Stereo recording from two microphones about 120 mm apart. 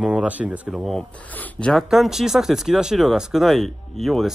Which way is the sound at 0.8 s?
Centre (ahead or behind).